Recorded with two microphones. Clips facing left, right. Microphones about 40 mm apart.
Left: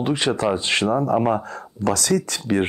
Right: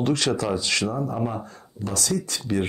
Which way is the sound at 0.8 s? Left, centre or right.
Left.